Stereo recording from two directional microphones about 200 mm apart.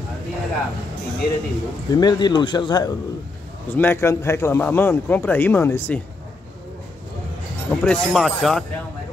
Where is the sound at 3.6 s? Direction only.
10° left (ahead or behind).